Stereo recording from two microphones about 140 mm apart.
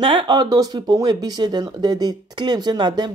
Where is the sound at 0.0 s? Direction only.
35° right (ahead or behind).